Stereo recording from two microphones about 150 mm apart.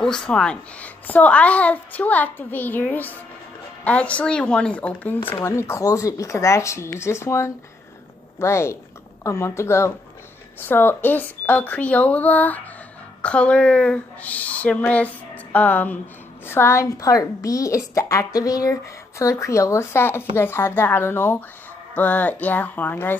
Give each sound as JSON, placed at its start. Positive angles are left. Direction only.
{"t": 0.0, "sound": "a child's voice", "side_deg": 5}